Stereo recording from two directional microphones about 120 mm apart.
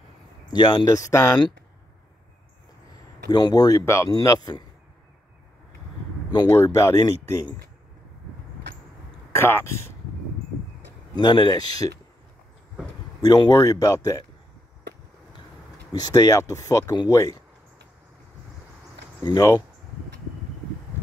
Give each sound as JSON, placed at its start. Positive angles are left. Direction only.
{"t": 0.5, "sound": "speech", "side_deg": 35}
{"t": 3.3, "sound": "speech", "side_deg": 35}
{"t": 3.8, "sound": "speech", "side_deg": 20}
{"t": 6.5, "sound": "speech", "side_deg": 25}
{"t": 9.3, "sound": "speech", "side_deg": 20}
{"t": 11.1, "sound": "speech", "side_deg": 40}
{"t": 13.2, "sound": "speech", "side_deg": 35}
{"t": 15.9, "sound": "speech", "side_deg": 35}
{"t": 19.2, "sound": "speech", "side_deg": 30}